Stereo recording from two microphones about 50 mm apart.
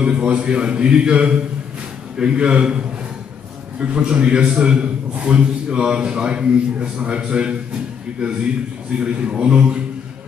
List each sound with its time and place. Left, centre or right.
0.0 s a man's voice: right
3.8 s a man's voice: right